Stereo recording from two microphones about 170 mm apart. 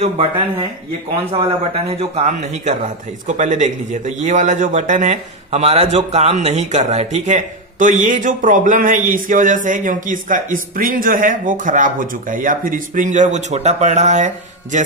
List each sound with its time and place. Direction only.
0.0 s speech: 35° right (ahead or behind)
2.0 s a man's voice: 40° right (ahead or behind)